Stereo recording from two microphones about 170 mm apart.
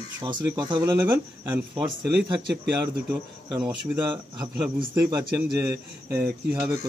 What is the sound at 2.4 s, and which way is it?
Speech, 80° right.